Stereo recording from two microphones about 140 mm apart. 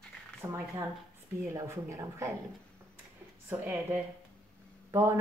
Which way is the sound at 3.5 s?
15° right (ahead or behind).